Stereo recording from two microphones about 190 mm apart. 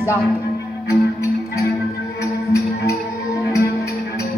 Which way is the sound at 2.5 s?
15° left (ahead or behind).